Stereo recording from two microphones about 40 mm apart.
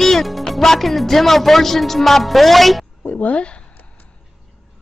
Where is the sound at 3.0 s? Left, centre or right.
Left.